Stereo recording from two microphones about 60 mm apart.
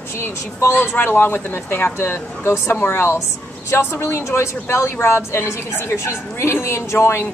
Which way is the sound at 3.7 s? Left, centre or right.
Left.